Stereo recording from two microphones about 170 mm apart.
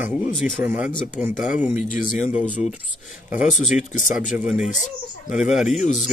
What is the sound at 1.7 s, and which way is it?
Speech, 50° left (ahead or behind).